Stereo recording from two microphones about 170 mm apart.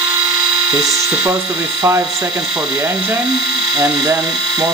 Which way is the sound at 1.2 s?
15° right (ahead or behind).